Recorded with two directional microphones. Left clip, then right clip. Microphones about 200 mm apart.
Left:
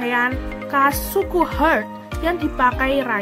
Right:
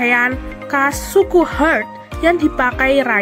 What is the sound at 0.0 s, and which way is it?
Speech, 15° right (ahead or behind).